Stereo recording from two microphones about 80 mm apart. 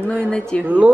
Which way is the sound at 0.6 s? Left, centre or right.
Centre.